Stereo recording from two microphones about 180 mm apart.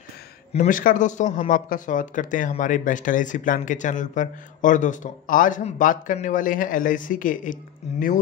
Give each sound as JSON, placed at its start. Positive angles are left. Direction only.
{"t": 0.5, "sound": "speech", "side_deg": 45}